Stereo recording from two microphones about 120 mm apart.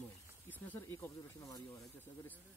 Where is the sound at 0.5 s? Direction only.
15° left (ahead or behind).